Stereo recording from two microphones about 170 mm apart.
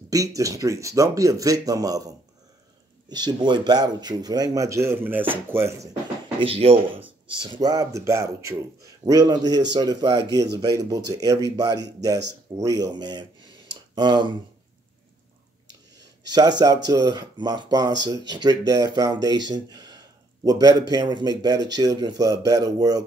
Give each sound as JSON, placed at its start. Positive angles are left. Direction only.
{"t": 0.1, "sound": "speech", "side_deg": -20}
{"t": 6.4, "sound": "speech", "side_deg": -35}
{"t": 16.3, "sound": "speech", "side_deg": -25}